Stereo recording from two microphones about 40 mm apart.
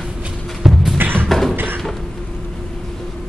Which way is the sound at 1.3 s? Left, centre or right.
Centre.